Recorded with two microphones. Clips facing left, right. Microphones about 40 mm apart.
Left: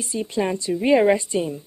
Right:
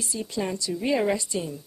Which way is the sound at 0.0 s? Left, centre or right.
Left.